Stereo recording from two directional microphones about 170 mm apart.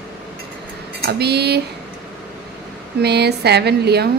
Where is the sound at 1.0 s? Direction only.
70° right (ahead or behind).